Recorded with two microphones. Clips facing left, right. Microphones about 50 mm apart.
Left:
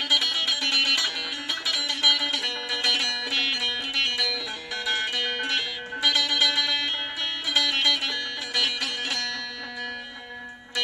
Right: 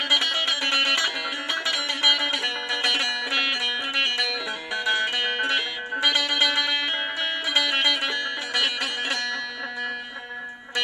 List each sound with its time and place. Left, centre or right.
0.1 s music: centre